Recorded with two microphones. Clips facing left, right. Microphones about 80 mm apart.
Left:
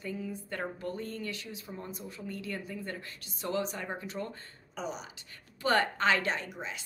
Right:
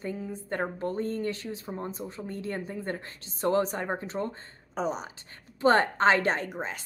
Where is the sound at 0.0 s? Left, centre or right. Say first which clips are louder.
Right 3 dB; right.